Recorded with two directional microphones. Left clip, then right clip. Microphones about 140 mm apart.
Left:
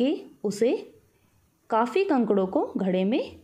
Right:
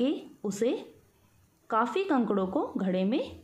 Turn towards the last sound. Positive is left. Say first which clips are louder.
# left 4 dB
turn(degrees=40)  # may be behind; listen again after turning